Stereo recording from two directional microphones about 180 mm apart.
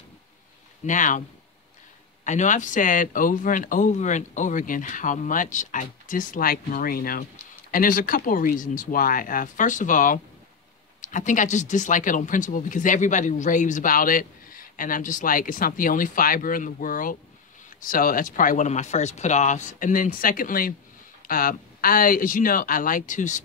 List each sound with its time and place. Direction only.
0.8 s speech: 45° left (ahead or behind)
2.2 s speech: 45° left (ahead or behind)